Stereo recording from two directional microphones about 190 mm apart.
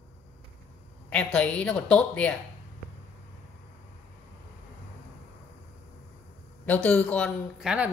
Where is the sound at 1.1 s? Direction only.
5° left (ahead or behind).